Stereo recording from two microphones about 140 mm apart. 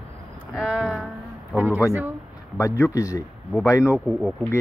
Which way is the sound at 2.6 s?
20° left (ahead or behind).